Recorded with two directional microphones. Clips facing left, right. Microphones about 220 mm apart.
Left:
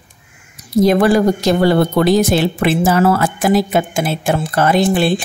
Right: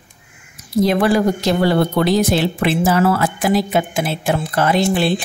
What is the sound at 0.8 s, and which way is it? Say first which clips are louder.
Speech: left 4 dB; 45° left (ahead or behind).